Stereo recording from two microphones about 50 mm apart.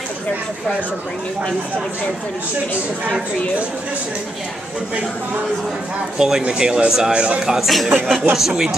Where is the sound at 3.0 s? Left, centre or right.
Right.